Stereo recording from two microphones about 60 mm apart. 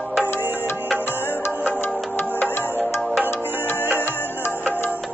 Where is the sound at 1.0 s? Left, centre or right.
Left.